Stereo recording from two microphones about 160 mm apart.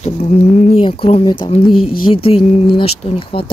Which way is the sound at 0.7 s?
35° left (ahead or behind).